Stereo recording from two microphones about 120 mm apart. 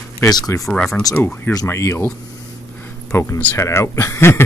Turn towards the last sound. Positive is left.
turn(degrees=20)  # may be behind; listen again after turning